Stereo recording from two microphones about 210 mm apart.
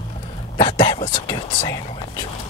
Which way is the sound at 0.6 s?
20° left (ahead or behind).